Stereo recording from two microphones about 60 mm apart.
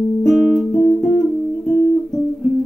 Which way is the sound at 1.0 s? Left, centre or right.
Centre.